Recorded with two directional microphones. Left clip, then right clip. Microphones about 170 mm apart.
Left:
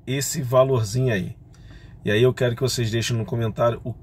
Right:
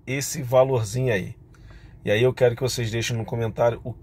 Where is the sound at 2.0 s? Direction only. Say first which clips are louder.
Left 1 dB; 5° left (ahead or behind).